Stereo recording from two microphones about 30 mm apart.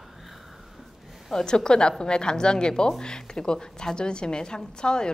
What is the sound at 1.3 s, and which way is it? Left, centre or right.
A woman's voice, left.